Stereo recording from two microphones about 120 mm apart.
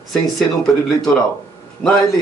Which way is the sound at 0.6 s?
5° left (ahead or behind).